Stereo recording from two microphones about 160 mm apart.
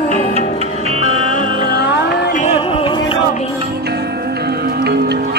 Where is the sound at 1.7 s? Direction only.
85° left.